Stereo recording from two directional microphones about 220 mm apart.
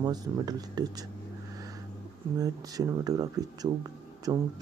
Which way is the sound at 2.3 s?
15° right (ahead or behind).